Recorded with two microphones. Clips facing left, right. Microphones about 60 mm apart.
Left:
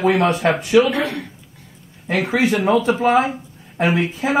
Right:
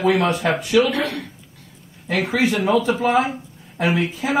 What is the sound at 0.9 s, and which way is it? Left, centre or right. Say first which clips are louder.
A man's voice: left 1 dB; centre.